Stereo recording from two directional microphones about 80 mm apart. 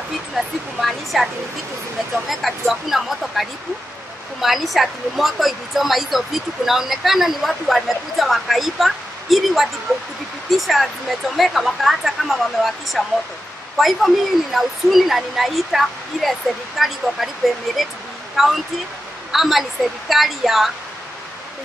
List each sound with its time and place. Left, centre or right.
0.4 s a woman's voice: centre